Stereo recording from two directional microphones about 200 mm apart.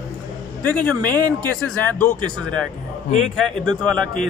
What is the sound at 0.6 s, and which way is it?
Speech, 5° left (ahead or behind).